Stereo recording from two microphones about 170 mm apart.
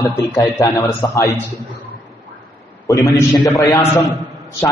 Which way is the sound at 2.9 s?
20° left (ahead or behind).